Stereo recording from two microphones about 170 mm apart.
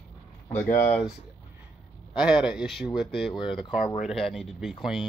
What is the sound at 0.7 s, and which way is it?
Speech, 50° left (ahead or behind).